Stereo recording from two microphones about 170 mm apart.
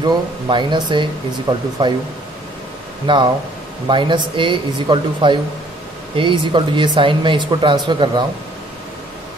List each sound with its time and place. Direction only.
0.0 s speech: 25° right (ahead or behind)
3.1 s speech: 30° right (ahead or behind)